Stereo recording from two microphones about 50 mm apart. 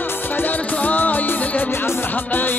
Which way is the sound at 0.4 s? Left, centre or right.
Left.